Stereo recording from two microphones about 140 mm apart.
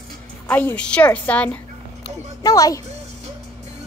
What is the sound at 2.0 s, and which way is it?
Speech, 25° left (ahead or behind).